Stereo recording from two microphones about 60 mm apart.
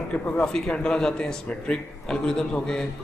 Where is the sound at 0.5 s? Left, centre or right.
Centre.